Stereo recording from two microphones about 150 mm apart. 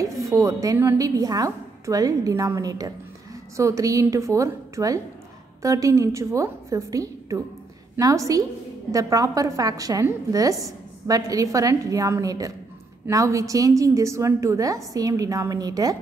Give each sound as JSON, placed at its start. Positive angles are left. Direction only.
{"t": 0.0, "sound": "a woman's voice", "side_deg": -20}